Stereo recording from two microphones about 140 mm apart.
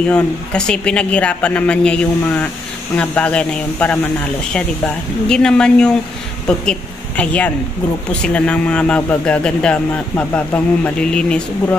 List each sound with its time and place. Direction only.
0.1 s speech: 5° left (ahead or behind)